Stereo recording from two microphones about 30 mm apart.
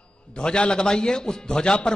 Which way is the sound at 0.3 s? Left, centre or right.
Left.